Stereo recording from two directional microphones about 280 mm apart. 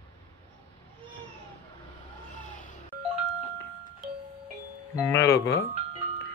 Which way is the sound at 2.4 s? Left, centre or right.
Left.